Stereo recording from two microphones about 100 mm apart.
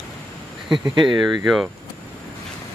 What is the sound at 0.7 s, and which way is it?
Speech, 50° right (ahead or behind).